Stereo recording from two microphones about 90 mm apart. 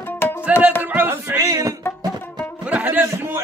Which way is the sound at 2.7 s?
20° right (ahead or behind).